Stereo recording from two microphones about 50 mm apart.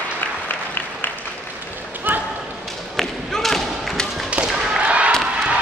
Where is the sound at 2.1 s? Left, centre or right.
Right.